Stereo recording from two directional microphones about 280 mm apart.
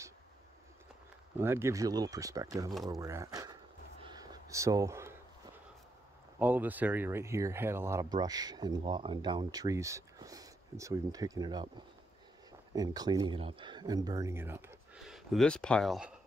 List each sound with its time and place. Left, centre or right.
1.4 s speech: centre
4.0 s a sound: centre
6.4 s speech: centre
12.7 s speech: centre